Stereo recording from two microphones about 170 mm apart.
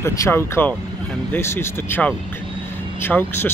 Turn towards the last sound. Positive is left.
turn(degrees=15)  # may be behind; listen again after turning